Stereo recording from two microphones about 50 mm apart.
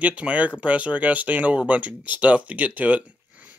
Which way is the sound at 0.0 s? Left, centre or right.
Right.